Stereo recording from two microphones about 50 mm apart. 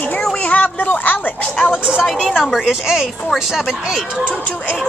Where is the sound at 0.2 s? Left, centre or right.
Left.